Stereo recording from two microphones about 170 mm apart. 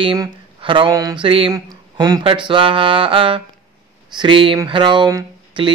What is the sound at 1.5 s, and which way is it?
A man's voice, 20° right (ahead or behind).